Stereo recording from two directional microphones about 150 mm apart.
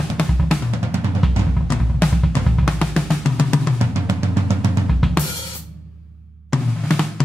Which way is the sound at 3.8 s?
15° right (ahead or behind).